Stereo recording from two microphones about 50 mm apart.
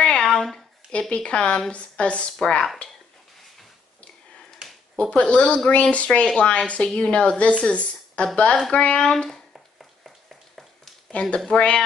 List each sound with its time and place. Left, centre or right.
0.0 s a sound: centre
1.1 s a woman's voice: left
4.9 s a woman's voice: left
9.1 s speech: centre
9.5 s finger snapping: centre
11.1 s a woman's voice: left